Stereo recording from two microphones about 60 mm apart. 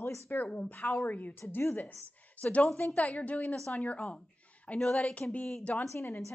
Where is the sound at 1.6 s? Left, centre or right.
Left.